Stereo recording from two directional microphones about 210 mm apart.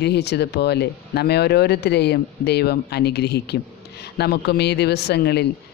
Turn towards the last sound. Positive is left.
turn(degrees=50)  # may be behind; listen again after turning